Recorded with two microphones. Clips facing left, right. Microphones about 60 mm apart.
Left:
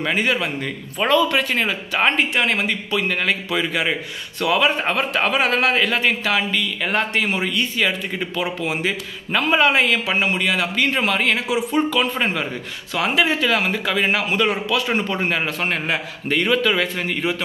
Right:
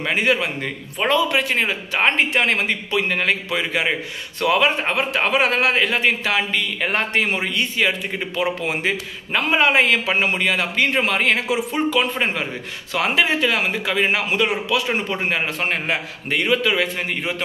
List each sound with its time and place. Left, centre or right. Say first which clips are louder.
0.1 s a man's voice: right 3 dB; right